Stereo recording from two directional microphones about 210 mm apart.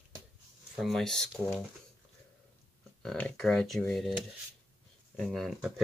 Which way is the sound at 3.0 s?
5° left (ahead or behind).